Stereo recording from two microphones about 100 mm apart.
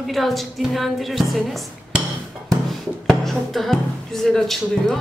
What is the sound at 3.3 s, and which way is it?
Speech, centre (ahead or behind).